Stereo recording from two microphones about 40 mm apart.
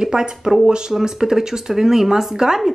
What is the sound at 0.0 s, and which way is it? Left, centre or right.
A woman's voice, centre.